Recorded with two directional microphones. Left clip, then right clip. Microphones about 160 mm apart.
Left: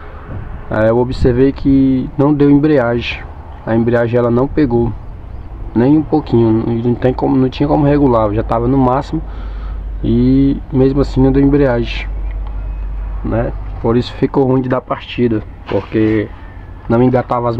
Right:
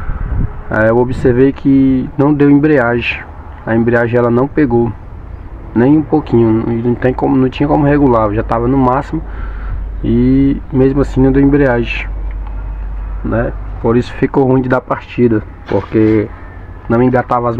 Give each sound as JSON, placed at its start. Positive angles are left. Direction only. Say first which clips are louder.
{"t": 0.7, "sound": "speech", "louder": "right 2 dB", "side_deg": 0}
{"t": 13.3, "sound": "speech", "louder": "right 2 dB", "side_deg": -5}
{"t": 14.6, "sound": "speech", "louder": "right 3 dB", "side_deg": -20}
{"t": 17.1, "sound": "speech", "louder": "right 2 dB", "side_deg": 0}